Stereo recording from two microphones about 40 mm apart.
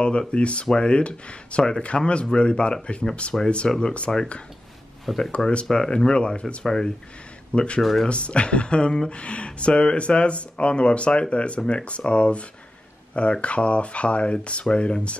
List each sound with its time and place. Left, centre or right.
0.3 s speech: left
5.1 s speech: centre
5.7 s speech: centre
5.9 s speech: left
6.6 s speech: centre
7.5 s speech: left
7.8 s speech: centre
8.1 s speech: left